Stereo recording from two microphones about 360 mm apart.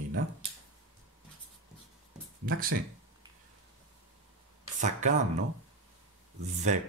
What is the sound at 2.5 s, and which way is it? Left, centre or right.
Speech, right.